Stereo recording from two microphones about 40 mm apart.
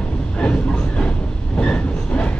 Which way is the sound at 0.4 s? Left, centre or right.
Left.